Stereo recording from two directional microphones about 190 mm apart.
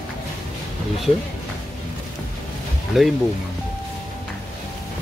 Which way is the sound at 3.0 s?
Centre (ahead or behind).